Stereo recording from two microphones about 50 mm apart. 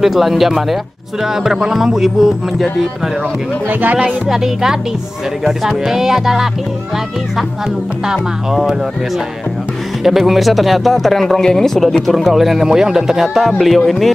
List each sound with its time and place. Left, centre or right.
0.0 s speech: centre
3.8 s speech: right
4.3 s speech: centre
8.1 s speech: centre
10.0 s speech: centre